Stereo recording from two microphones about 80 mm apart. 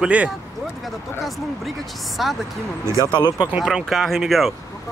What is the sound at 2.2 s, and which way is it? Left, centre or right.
Speech, centre.